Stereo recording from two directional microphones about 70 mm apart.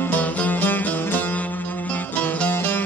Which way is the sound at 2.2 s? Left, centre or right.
Left.